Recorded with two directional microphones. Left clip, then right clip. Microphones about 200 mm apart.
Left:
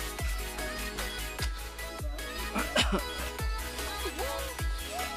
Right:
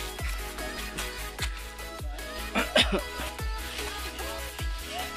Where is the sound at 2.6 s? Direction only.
Centre (ahead or behind).